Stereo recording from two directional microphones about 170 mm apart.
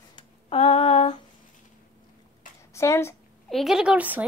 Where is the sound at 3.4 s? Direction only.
Centre (ahead or behind).